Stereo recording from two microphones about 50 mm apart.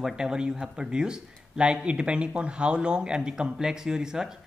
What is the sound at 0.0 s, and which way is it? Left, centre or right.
Speech, centre.